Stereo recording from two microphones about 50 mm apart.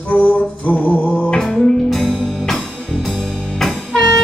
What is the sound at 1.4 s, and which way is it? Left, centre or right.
Music, centre.